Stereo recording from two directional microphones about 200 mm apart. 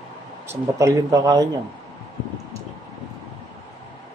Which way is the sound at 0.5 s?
15° right (ahead or behind).